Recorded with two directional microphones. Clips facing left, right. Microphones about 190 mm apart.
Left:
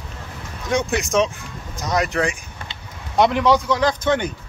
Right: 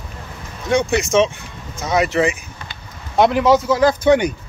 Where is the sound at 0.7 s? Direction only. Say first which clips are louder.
Right 4 dB; centre (ahead or behind).